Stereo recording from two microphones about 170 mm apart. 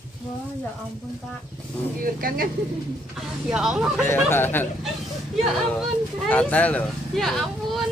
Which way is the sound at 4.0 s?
15° left (ahead or behind).